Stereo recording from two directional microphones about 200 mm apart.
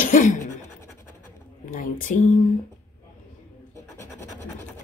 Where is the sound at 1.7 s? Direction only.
40° left (ahead or behind).